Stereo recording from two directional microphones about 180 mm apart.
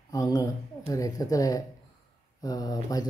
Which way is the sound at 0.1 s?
20° left (ahead or behind).